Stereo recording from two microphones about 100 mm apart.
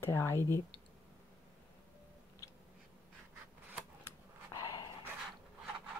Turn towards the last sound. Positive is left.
turn(degrees=45)  # may be behind; listen again after turning